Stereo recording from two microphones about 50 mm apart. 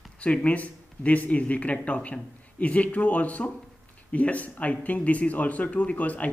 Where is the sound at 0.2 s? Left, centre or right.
Left.